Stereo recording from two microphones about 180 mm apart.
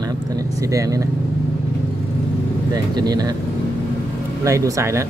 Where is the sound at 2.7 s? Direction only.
20° right (ahead or behind).